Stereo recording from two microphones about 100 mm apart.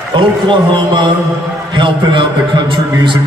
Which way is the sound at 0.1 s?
55° right (ahead or behind).